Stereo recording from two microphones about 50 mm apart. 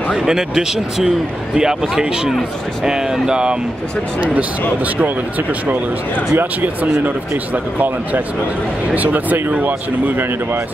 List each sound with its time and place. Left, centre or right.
0.1 s a man's voice: centre
6.3 s speech: right
8.9 s speech: right